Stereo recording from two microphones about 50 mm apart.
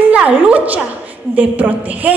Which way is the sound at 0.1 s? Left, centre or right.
Right.